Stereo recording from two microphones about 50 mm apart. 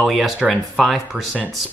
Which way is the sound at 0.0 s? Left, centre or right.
Centre.